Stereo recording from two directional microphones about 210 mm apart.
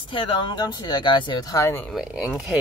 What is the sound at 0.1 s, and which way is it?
Speech, 25° left (ahead or behind).